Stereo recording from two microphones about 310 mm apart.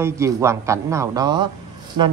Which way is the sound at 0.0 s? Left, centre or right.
Centre.